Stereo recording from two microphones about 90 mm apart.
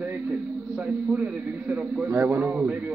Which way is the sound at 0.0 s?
20° right (ahead or behind).